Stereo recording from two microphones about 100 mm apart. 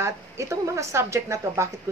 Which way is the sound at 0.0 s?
30° right (ahead or behind).